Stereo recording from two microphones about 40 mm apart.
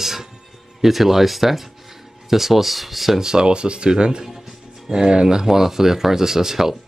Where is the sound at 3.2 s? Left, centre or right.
Centre.